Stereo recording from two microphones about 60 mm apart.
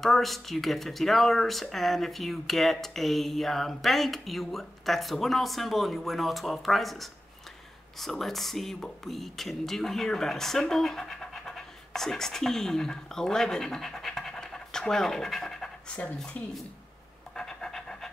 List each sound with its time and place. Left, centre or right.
0.0 s speech: centre
16.3 s speech: left
17.4 s pant: centre